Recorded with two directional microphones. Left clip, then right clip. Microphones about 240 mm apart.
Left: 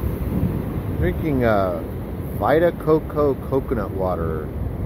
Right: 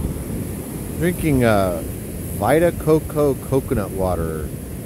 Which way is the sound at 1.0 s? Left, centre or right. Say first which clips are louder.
Right 3 dB; right.